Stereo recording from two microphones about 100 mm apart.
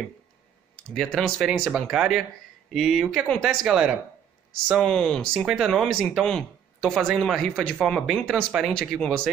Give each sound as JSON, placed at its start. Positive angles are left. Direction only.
{"t": 0.9, "sound": "speech", "side_deg": 0}